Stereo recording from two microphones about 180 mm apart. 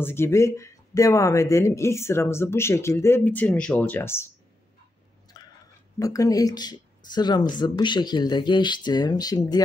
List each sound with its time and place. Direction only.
0.0 s speech: 15° left (ahead or behind)
5.4 s chewing: 20° left (ahead or behind)
5.9 s speech: 20° left (ahead or behind)